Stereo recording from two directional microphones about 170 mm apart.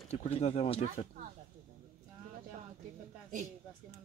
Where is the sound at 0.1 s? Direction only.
40° left (ahead or behind).